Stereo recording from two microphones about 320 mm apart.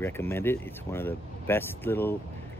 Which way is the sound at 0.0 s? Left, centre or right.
Centre.